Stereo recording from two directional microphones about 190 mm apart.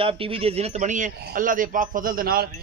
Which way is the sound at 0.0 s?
30° right (ahead or behind).